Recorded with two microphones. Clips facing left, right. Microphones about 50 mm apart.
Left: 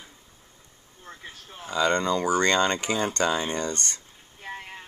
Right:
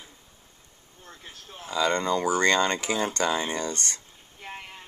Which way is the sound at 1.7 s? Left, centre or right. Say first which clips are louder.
Left 1 dB; left.